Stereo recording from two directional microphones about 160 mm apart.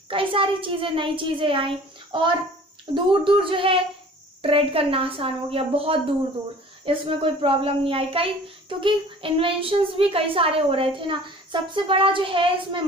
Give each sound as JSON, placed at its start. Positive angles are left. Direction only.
{"t": 0.1, "sound": "a child's voice", "side_deg": -35}
{"t": 2.9, "sound": "a child's voice", "side_deg": -30}